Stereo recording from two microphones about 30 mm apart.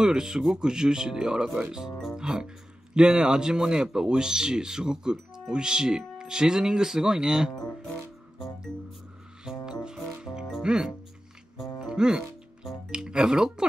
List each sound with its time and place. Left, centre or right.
0.0 s speech: centre
0.6 s speech: right
9.4 s music: right
10.7 s speech: right
11.5 s music: right
12.9 s speech: right